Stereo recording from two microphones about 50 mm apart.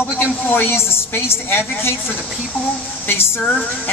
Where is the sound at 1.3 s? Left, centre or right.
Left.